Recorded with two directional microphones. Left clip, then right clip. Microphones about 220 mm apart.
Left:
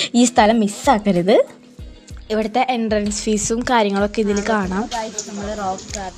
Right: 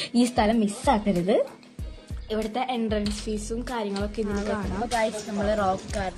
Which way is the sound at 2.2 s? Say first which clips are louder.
Left 9 dB; 35° left (ahead or behind).